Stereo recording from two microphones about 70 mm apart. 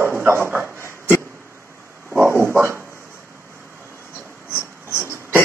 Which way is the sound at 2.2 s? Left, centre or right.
Right.